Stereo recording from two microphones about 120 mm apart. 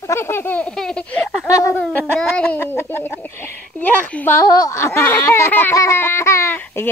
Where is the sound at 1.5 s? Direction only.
25° left (ahead or behind).